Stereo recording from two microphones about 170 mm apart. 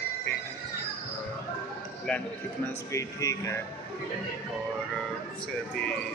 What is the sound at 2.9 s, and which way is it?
Speech, 20° left (ahead or behind).